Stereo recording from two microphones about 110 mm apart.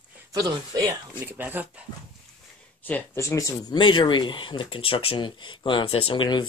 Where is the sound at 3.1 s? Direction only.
30° left (ahead or behind).